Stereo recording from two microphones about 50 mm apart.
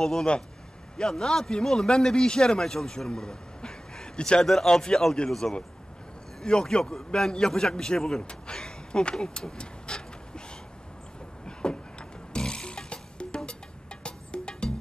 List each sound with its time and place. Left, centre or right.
0.0 s a man's voice: centre
11.4 s music: centre